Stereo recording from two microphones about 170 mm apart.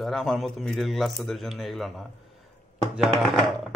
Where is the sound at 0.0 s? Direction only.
Centre (ahead or behind).